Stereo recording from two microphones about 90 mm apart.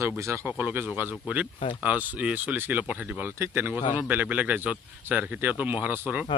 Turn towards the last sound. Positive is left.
turn(degrees=-15)  # may be behind; listen again after turning